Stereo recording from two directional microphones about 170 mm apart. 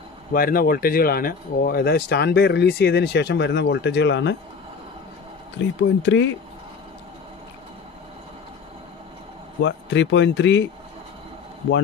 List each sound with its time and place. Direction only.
0.3 s speech: 60° left (ahead or behind); by 4.4 s 90° left
5.8 s speech: 90° left
9.6 s speech: 90° left